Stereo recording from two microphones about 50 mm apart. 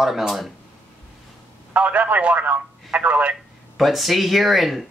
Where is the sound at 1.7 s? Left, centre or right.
Right.